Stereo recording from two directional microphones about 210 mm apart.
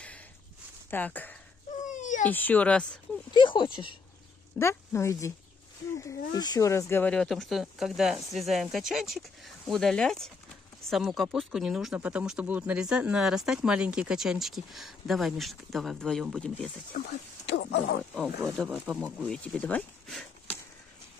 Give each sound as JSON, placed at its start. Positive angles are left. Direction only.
{"t": 0.8, "sound": "speech", "side_deg": 10}
{"t": 1.8, "sound": "a sound", "side_deg": 35}
{"t": 2.2, "sound": "speech", "side_deg": 10}
{"t": 3.3, "sound": "speech", "side_deg": 20}
{"t": 6.3, "sound": "speech", "side_deg": 20}
{"t": 16.9, "sound": "speech", "side_deg": 50}
{"t": 18.1, "sound": "speech", "side_deg": 0}
{"t": 18.9, "sound": "speech", "side_deg": 5}